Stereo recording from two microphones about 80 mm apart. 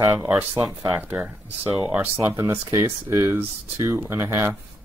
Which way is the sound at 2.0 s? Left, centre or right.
Right.